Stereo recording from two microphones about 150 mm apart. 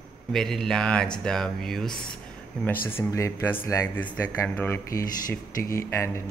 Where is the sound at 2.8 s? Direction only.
15° left (ahead or behind).